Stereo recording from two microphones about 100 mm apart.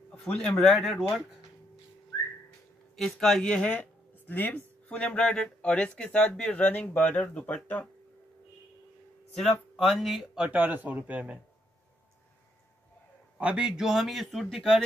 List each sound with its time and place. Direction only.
0.2 s a man's voice: 5° left (ahead or behind)
3.0 s speech: 5° left (ahead or behind)
9.4 s speech: centre (ahead or behind)
13.4 s a man's voice: 10° right (ahead or behind)